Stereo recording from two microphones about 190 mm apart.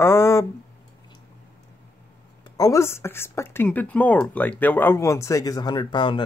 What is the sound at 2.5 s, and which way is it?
Speech, 15° left (ahead or behind).